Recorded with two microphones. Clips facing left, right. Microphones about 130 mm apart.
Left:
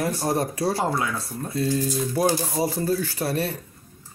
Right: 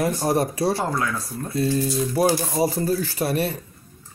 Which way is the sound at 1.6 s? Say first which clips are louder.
Right 2 dB; 10° right (ahead or behind).